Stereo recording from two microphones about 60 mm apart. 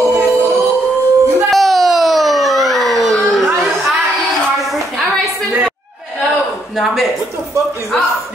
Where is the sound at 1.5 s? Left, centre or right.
Centre.